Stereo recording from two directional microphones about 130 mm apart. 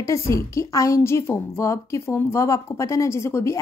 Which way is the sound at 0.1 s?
25° left (ahead or behind).